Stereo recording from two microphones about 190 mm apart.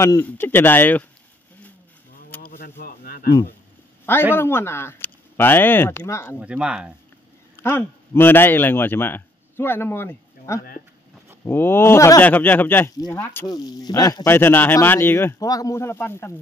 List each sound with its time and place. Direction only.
0.0 s speech: 15° left (ahead or behind)
2.4 s a sound: 50° left (ahead or behind)
4.0 s a sound: 10° left (ahead or behind)
4.4 s speech: 10° left (ahead or behind)
6.4 s speech: 5° right (ahead or behind)
7.5 s a man's voice: 10° left (ahead or behind)